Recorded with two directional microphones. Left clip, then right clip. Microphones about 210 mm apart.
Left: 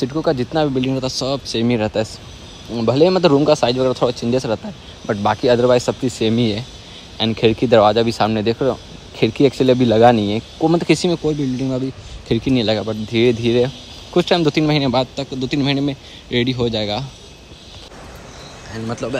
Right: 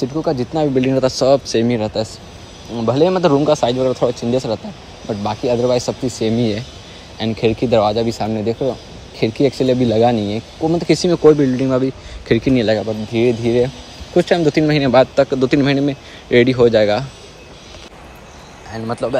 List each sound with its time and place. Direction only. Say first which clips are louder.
0.0 s speech: even; 25° left (ahead or behind)
0.6 s a man's voice: right 3 dB; 5° left (ahead or behind)
2.7 s a man's voice: even; 40° left (ahead or behind)
3.5 s a man's voice: even; 25° left (ahead or behind)
5.0 s speech: left 3 dB; 20° left (ahead or behind)
6.0 s a man's voice: even; 5° left (ahead or behind)
8.2 s a man's voice: left 4 dB; 50° left (ahead or behind)
8.5 s speech: left 1 dB; 30° left (ahead or behind)
9.2 s a man's voice: left 1 dB; 5° left (ahead or behind)
10.6 s speech: left 1 dB; 55° left (ahead or behind)
10.9 s a man's voice: right 6 dB; 5° left (ahead or behind)
12.8 s speech: even; 25° left (ahead or behind)
14.2 s a man's voice: right 1 dB; 5° left (ahead or behind)
18.7 s a man's voice: right 4 dB; centre (ahead or behind)